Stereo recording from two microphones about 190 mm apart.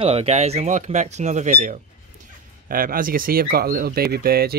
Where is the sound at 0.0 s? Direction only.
30° right (ahead or behind).